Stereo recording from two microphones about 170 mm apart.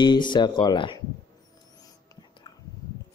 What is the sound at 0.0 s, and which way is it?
Speech, 25° left (ahead or behind).